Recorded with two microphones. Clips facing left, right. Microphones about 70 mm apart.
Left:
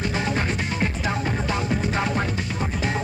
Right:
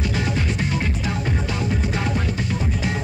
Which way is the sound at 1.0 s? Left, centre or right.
Left.